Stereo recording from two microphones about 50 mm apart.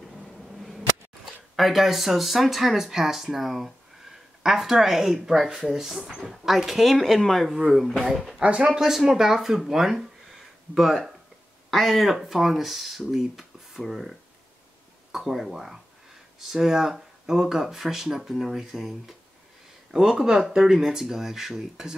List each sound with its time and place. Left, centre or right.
0.4 s speech: centre
8.4 s speech: right
8.6 s speech: centre
9.6 s a sound: centre
11.7 s speech: centre
15.1 s speech: centre